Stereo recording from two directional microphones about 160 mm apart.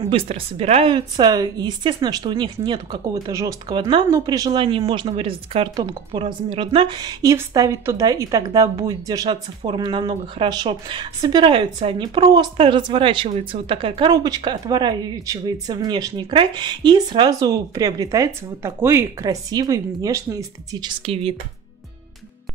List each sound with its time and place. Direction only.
0.1 s speech: 35° right (ahead or behind); by 20.9 s 20° right (ahead or behind)
21.0 s speech: 35° right (ahead or behind)